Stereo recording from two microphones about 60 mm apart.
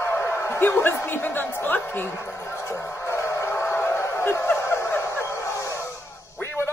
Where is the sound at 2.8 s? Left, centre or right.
Left.